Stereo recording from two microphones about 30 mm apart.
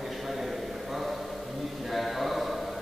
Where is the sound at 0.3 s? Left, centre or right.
Centre.